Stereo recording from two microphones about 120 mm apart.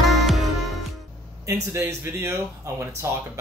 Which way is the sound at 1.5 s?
20° right (ahead or behind).